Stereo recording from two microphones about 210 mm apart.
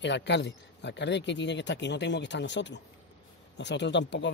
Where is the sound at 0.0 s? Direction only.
55° left (ahead or behind).